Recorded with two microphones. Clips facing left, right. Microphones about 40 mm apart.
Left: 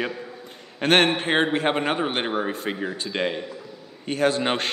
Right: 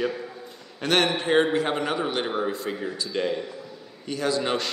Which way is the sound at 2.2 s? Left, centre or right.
Left.